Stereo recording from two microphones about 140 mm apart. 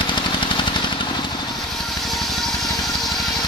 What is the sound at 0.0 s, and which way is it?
Engine, 35° left (ahead or behind).